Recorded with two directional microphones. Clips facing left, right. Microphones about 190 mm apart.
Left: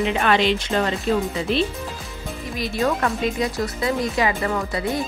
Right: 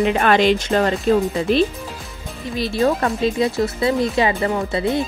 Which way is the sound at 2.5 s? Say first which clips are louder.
Right 4 dB; 30° right (ahead or behind).